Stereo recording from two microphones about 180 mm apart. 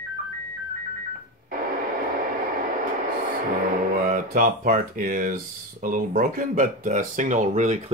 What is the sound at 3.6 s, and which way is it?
Music, 50° right (ahead or behind).